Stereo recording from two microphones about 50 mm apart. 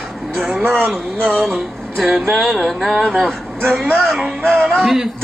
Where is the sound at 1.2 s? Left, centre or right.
Centre.